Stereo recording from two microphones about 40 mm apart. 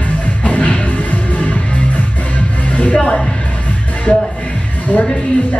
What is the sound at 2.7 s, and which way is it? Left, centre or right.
Music, left.